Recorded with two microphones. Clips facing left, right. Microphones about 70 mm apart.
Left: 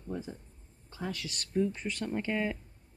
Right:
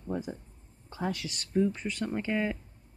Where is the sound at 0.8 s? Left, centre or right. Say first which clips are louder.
Right 5 dB; right.